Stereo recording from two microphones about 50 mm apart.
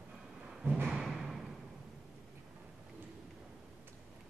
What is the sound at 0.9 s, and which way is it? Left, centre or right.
Music, centre.